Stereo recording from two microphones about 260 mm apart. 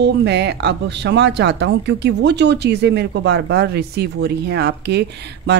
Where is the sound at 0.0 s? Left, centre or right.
Right.